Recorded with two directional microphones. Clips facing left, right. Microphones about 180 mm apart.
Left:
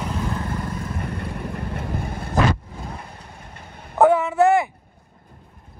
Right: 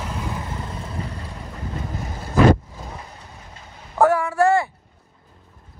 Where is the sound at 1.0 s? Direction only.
60° left (ahead or behind).